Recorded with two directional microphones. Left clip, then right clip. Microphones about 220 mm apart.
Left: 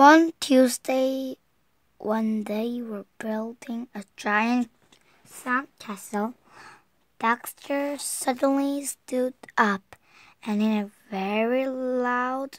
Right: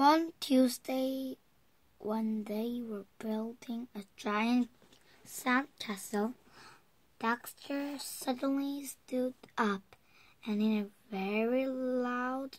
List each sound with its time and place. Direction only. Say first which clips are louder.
0.0 s speech: left 12 dB; 40° left (ahead or behind)
5.8 s speech: left 6 dB; 35° left (ahead or behind)